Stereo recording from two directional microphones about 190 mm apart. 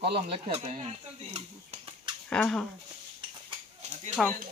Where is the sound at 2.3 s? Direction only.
5° left (ahead or behind).